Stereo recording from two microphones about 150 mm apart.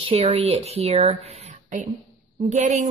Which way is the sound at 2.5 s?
50° right (ahead or behind).